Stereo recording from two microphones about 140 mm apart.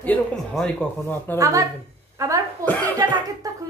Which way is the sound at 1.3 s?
25° right (ahead or behind).